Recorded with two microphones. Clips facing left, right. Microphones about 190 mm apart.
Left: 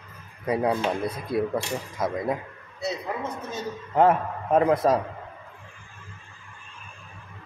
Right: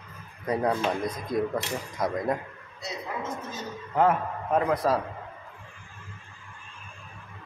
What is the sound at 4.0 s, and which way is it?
A man's voice, 30° left (ahead or behind).